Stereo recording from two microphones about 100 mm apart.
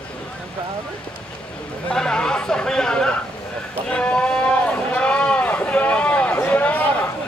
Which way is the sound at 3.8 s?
10° left (ahead or behind).